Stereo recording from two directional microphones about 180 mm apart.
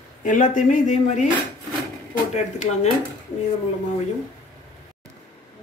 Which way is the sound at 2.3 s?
40° left (ahead or behind).